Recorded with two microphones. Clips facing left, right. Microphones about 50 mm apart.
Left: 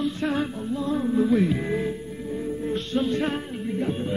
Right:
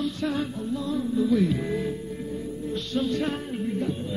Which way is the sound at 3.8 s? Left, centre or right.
Left.